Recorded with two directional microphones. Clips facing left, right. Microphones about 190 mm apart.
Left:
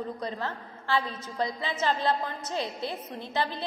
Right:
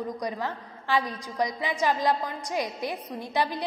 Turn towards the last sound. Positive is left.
turn(degrees=-15)  # may be behind; listen again after turning